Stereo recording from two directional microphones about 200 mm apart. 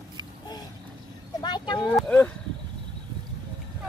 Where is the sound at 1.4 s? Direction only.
20° left (ahead or behind).